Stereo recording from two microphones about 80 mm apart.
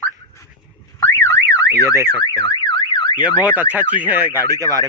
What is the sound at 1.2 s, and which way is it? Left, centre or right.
Car alarm, left.